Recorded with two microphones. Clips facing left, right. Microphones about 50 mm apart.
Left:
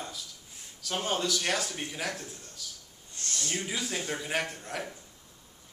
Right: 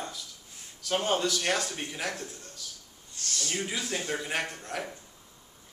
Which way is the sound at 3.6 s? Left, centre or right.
Centre.